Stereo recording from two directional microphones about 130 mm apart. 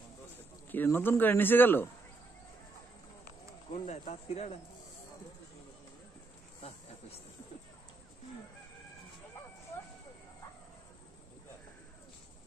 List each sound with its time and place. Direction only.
0.7 s speech: 15° left (ahead or behind)
3.7 s speech: 60° left (ahead or behind)